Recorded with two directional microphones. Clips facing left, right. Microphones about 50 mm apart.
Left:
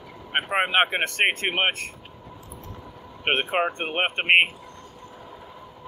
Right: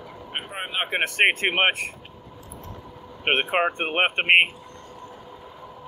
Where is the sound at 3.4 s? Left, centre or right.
Centre.